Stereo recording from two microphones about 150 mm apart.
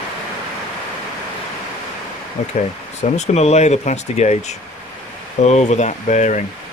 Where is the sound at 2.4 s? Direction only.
45° left (ahead or behind).